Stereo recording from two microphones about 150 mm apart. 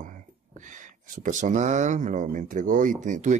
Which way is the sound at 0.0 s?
60° right (ahead or behind).